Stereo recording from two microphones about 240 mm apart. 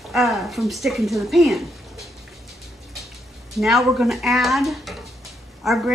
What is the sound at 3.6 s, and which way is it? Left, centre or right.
Speech, centre.